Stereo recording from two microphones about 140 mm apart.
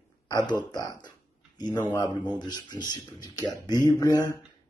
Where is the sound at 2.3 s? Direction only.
30° left (ahead or behind).